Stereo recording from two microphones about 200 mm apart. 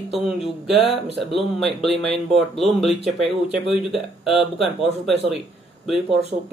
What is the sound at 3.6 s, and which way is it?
Speech, 25° left (ahead or behind).